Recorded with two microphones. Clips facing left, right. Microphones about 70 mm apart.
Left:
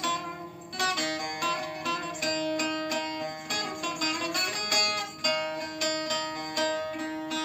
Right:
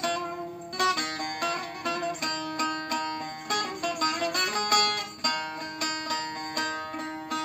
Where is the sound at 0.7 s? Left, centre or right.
Right.